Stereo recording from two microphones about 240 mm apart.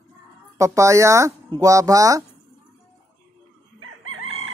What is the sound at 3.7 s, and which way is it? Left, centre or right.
Chicken, right.